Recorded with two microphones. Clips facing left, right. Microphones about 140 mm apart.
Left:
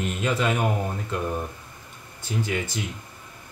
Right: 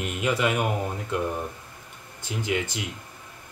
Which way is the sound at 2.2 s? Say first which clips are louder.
Even; 15° right (ahead or behind).